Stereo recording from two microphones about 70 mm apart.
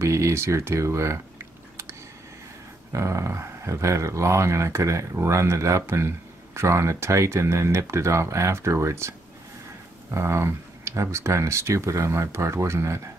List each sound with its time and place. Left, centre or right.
0.0 s speech: right
2.9 s speech: right
10.1 s speech: right